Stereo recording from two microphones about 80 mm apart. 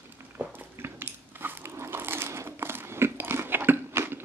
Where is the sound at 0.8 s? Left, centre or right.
Right.